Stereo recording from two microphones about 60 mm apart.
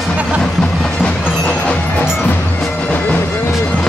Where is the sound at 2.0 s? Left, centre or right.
Left.